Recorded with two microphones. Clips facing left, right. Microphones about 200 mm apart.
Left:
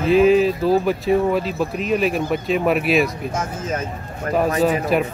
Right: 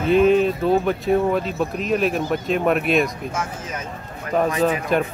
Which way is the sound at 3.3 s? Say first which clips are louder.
Left 4 dB; 40° left (ahead or behind).